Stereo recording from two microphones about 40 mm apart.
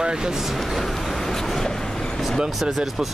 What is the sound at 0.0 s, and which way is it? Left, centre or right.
Vehicle, right.